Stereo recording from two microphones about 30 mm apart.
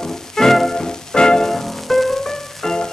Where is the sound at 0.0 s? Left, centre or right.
Centre.